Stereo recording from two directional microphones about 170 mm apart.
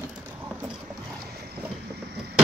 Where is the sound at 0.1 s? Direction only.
5° right (ahead or behind).